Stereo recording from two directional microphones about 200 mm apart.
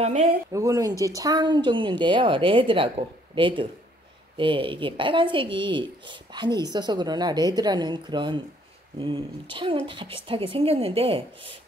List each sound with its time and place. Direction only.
0.5 s speech: 15° right (ahead or behind)